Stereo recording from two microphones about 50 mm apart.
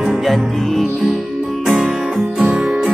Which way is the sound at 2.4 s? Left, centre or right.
Right.